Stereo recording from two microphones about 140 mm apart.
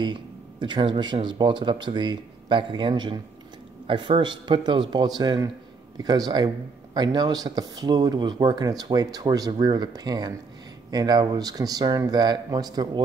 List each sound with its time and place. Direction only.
0.0 s a man's voice: 35° right (ahead or behind)